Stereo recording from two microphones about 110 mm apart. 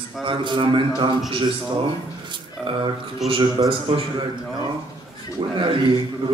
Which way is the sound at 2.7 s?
50° right (ahead or behind).